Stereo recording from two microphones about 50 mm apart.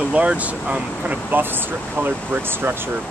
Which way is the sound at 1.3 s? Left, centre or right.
Right.